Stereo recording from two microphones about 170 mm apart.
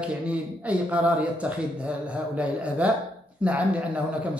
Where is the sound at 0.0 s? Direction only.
5° right (ahead or behind).